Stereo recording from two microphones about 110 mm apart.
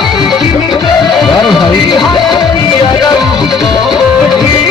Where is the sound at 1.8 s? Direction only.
45° left (ahead or behind).